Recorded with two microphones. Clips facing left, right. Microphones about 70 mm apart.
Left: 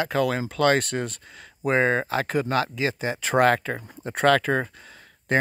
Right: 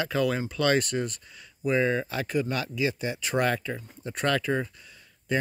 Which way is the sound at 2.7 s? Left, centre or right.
Left.